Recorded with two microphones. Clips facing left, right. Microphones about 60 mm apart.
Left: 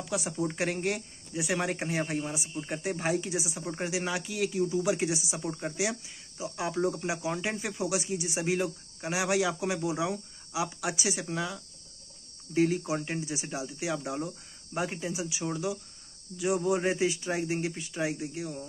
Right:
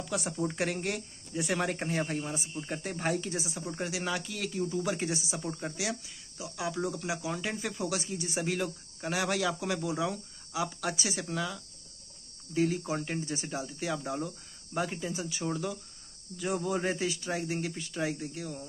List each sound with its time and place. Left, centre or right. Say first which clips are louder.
0.0 s speech: left 1 dB; centre
3.6 s speech: left 1 dB; left
12.7 s speech: left 2 dB; centre